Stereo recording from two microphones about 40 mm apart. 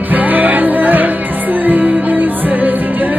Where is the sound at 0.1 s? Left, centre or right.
Right.